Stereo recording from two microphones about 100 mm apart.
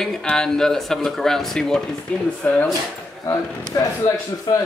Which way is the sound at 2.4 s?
15° left (ahead or behind).